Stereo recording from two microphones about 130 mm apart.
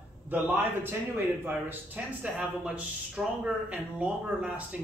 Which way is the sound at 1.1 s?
15° right (ahead or behind).